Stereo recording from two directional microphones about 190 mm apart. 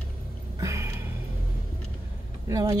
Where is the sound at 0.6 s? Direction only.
15° right (ahead or behind).